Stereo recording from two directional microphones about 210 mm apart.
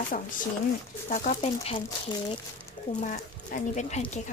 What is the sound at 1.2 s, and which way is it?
Speech, 30° left (ahead or behind).